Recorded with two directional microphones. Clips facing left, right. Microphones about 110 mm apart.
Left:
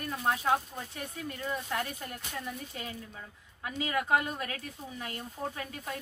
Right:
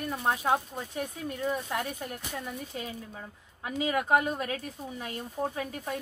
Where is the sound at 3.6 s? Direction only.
15° right (ahead or behind).